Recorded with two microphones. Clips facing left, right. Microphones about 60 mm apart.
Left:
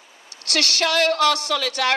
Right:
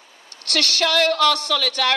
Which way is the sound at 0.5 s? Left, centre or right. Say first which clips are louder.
Right 1 dB; left.